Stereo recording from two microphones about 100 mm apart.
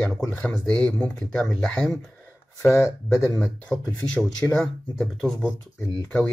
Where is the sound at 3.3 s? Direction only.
10° left (ahead or behind).